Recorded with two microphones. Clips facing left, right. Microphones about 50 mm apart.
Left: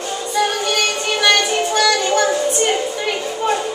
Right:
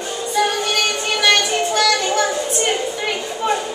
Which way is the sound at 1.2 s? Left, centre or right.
Centre.